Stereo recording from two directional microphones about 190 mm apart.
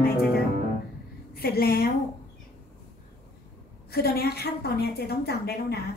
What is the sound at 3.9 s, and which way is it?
A woman's voice, 55° left (ahead or behind).